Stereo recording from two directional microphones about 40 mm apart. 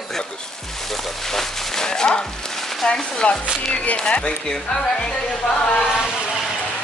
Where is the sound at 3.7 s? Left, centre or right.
Left.